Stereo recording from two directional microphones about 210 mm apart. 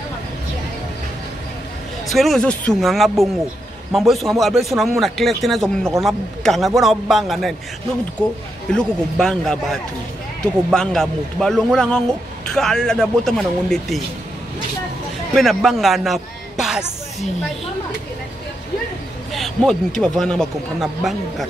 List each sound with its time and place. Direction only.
2.1 s speech: centre (ahead or behind)
8.7 s speech: centre (ahead or behind)
15.3 s speech: centre (ahead or behind)
19.3 s speech: centre (ahead or behind)